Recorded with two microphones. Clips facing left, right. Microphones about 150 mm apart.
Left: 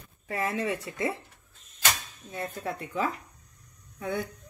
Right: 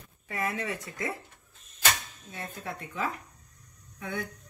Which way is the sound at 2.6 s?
40° left (ahead or behind).